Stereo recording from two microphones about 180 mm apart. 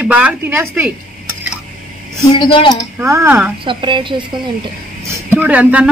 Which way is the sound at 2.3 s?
25° left (ahead or behind).